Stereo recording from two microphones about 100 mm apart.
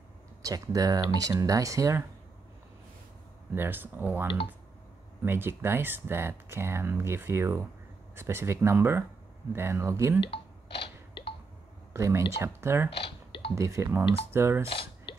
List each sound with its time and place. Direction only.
0.4 s speech: 35° right (ahead or behind)
3.5 s speech: 20° right (ahead or behind)
11.9 s speech: 25° right (ahead or behind)
13.0 s a sound: 65° left (ahead or behind)
13.6 s speech: 30° right (ahead or behind)
14.7 s a sound: 60° left (ahead or behind)